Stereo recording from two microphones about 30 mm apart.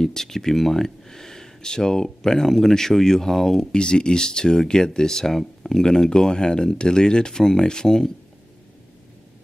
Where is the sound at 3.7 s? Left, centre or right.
Left.